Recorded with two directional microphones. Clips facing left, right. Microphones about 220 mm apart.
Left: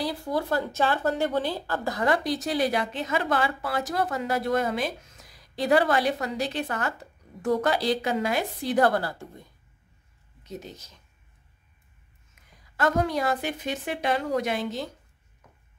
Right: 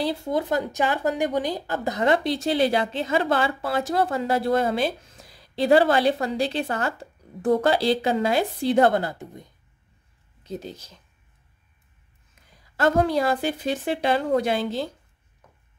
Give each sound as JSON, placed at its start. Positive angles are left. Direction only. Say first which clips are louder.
{"t": 0.0, "sound": "speech", "louder": "right 3 dB", "side_deg": -25}
{"t": 10.4, "sound": "a woman's voice", "louder": "right 5 dB", "side_deg": -30}
{"t": 12.4, "sound": "a sound", "louder": "right 4 dB", "side_deg": -30}
{"t": 12.7, "sound": "a woman's voice", "louder": "right 4 dB", "side_deg": -30}